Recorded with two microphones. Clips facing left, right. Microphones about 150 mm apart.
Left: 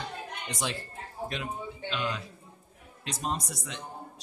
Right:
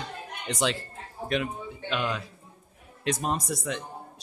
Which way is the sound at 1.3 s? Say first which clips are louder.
Right 10 dB; 60° right (ahead or behind).